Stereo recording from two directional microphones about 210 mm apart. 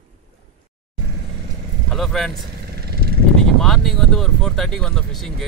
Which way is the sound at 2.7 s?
50° right (ahead or behind).